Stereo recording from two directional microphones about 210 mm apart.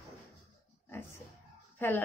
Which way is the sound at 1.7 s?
10° left (ahead or behind).